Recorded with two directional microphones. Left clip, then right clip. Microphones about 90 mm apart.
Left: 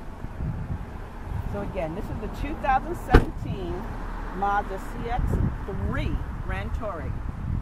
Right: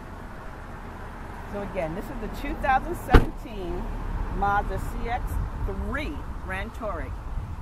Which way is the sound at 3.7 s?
30° left (ahead or behind).